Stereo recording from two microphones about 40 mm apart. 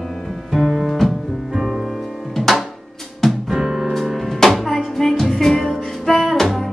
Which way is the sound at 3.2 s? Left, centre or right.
Centre.